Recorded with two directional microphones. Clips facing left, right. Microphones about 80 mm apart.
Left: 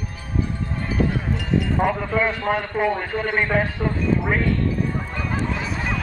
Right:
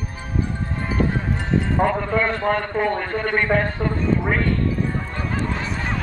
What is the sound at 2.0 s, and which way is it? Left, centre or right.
A man's voice, centre.